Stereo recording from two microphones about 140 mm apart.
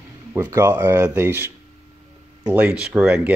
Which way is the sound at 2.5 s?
10° right (ahead or behind).